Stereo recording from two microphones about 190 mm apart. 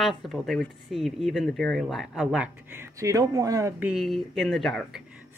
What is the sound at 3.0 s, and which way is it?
Speech, 15° right (ahead or behind).